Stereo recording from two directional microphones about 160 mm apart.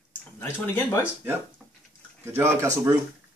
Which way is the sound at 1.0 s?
10° right (ahead or behind).